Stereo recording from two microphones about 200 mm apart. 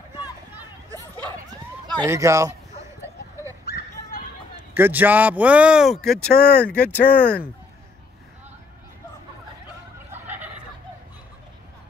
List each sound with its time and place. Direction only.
0.6 s a sound: 15° right (ahead or behind)
2.0 s a man's voice: 15° right (ahead or behind)
3.6 s children playing: 55° left (ahead or behind)
4.6 s a man's voice: 10° right (ahead or behind)
6.3 s speech: 55° left (ahead or behind)
6.7 s speech: 10° left (ahead or behind)